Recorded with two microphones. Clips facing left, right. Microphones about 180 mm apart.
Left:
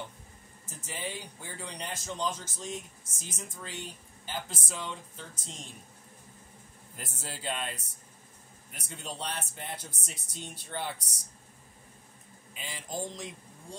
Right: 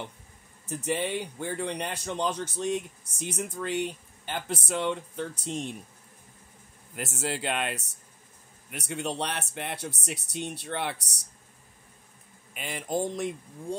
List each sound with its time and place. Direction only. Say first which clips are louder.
0.7 s a man's voice: right 10 dB; 65° right (ahead or behind)
7.0 s speech: right 11 dB; 75° right (ahead or behind)
12.5 s a man's voice: right 8 dB; 60° right (ahead or behind)